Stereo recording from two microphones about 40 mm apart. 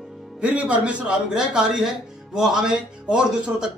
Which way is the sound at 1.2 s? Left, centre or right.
Centre.